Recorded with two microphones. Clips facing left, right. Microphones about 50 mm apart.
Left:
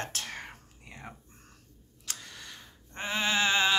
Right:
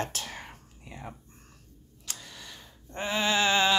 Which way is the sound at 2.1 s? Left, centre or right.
Left.